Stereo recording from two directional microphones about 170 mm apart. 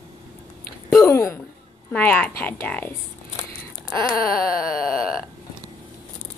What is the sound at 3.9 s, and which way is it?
Dog, 20° left (ahead or behind).